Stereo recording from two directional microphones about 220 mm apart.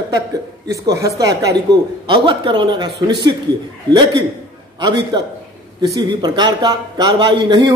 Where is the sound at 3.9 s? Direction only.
20° right (ahead or behind).